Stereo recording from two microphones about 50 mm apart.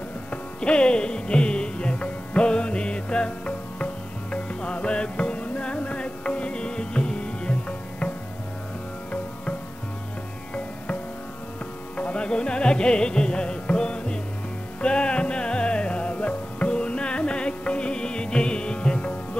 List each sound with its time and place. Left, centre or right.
0.3 s music: centre
12.0 s music: left